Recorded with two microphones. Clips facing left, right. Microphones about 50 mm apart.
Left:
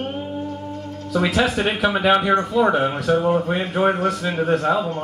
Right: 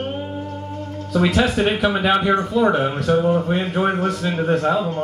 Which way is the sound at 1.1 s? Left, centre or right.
Centre.